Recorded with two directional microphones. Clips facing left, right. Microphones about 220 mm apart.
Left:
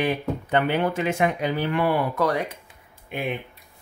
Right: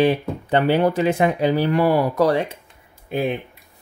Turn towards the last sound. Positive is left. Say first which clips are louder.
# right 6 dB
turn(degrees=-35)  # may be behind; listen again after turning